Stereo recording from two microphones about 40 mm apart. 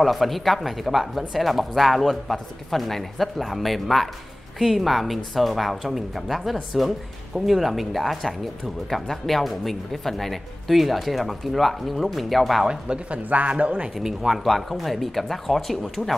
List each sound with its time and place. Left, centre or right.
0.0 s speech: centre
12.6 s speech: right
13.1 s speech: right
13.9 s speech: centre